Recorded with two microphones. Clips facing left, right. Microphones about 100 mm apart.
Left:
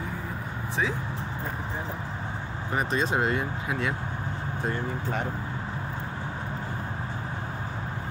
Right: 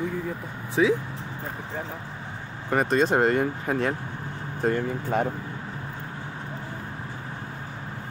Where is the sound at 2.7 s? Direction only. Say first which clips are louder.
Right 5 dB; 55° right (ahead or behind).